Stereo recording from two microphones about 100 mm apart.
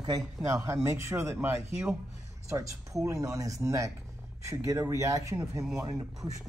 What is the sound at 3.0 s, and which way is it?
Speech, 30° right (ahead or behind).